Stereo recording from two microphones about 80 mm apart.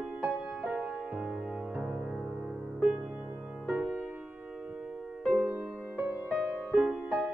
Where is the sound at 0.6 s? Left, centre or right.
Centre.